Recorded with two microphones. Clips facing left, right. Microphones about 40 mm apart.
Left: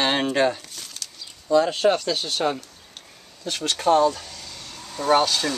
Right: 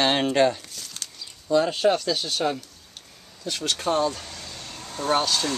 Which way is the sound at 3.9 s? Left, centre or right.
Centre.